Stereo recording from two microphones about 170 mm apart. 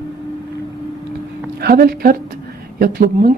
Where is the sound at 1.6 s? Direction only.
60° right (ahead or behind).